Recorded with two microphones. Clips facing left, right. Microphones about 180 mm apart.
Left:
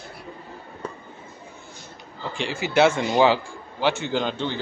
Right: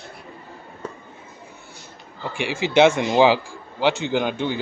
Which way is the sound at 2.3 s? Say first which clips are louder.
Right 3 dB; 10° right (ahead or behind).